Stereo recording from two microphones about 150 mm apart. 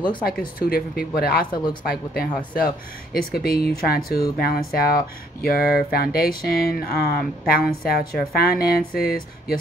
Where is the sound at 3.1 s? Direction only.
90° left.